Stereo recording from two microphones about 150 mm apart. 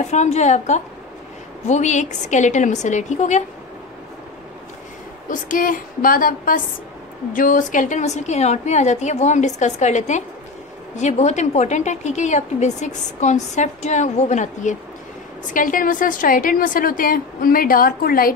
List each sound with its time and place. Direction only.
0.0 s a woman's voice: 50° left (ahead or behind)
5.3 s a woman's voice: 65° left (ahead or behind)
15.5 s a woman's voice: 65° left (ahead or behind)